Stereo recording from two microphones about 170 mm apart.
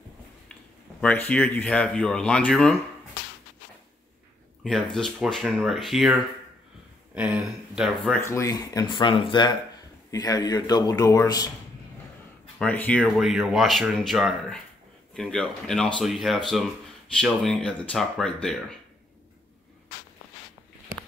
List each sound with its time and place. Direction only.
1.0 s speech: 10° left (ahead or behind)
4.9 s speech: centre (ahead or behind)
8.2 s speech: 15° left (ahead or behind)
12.5 s speech: 10° left (ahead or behind)